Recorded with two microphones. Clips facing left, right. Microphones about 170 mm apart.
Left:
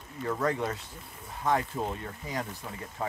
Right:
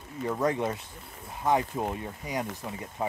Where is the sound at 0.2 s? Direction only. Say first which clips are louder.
Right 2 dB; 20° right (ahead or behind).